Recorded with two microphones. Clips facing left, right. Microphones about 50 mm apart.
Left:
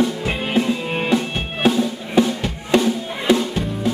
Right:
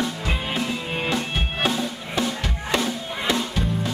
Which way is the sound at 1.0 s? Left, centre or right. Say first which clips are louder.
Left 6 dB; centre.